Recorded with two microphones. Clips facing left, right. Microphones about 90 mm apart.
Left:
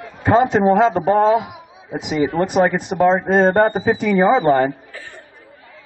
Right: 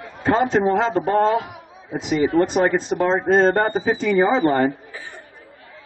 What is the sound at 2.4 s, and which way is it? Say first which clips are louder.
A man's voice: left 2 dB; 15° left (ahead or behind).